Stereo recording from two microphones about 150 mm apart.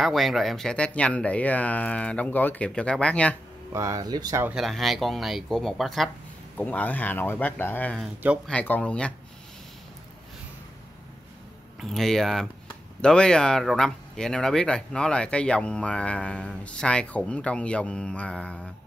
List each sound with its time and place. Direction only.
0.0 s speech: centre (ahead or behind)
3.7 s speech: 20° right (ahead or behind)
4.5 s speech: centre (ahead or behind)
11.8 s speech: centre (ahead or behind)